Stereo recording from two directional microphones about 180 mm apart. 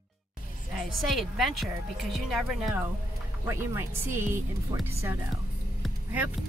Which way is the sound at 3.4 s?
15° right (ahead or behind).